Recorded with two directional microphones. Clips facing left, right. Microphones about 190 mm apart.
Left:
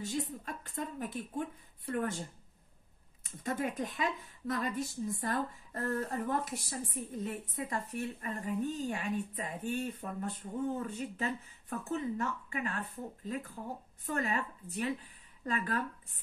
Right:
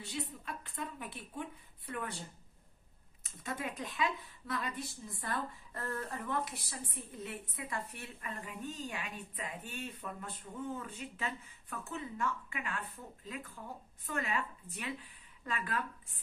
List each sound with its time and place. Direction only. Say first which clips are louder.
0.0 s a woman's voice: left 5 dB; 45° left (ahead or behind)
3.3 s a woman's voice: left 6 dB; 45° left (ahead or behind)